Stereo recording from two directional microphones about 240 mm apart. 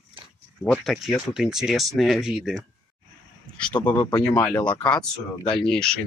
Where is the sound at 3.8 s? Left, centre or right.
Centre.